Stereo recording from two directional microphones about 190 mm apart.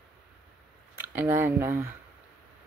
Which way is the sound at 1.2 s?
10° right (ahead or behind).